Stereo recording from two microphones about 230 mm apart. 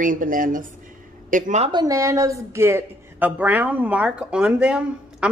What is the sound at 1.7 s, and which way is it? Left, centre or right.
Speech, centre.